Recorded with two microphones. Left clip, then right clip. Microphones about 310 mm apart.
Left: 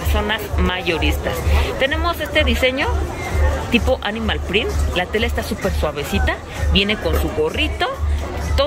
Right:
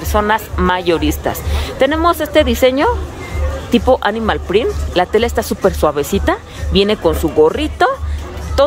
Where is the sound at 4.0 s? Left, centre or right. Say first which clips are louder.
Right 7 dB; centre.